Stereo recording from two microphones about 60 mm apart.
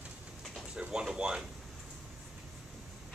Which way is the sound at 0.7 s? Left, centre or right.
Centre.